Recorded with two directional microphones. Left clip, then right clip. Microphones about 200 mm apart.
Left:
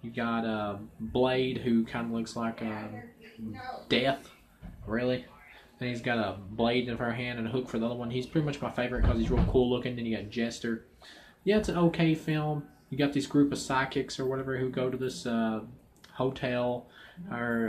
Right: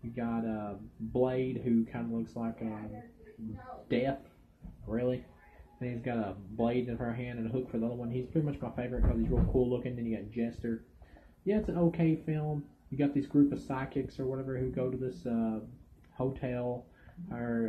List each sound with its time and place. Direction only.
0.1 s speech: 20° left (ahead or behind)
3.8 s speech: 15° left (ahead or behind)